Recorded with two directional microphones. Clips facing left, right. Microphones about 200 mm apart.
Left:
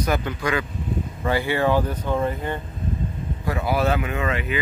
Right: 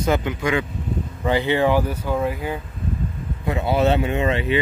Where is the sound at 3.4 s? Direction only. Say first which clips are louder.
Right 3 dB; 25° right (ahead or behind).